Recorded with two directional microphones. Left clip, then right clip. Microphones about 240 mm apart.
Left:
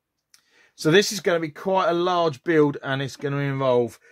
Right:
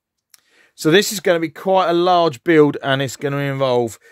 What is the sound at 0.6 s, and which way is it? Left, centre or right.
Speech, right.